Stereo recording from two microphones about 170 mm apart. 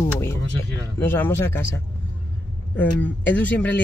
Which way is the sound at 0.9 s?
15° left (ahead or behind).